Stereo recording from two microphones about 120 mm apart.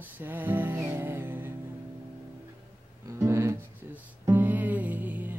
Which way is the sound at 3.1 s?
25° right (ahead or behind).